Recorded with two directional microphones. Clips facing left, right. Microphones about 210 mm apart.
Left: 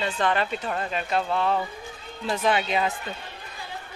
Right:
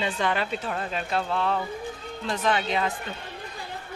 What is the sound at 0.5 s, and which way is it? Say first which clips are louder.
Speech: left 1 dB; centre (ahead or behind).